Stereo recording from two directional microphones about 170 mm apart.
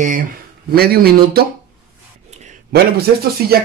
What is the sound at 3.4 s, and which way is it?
Speech, 65° right (ahead or behind).